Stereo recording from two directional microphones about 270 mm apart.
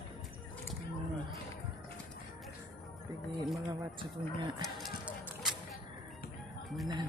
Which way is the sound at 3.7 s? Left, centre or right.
Centre.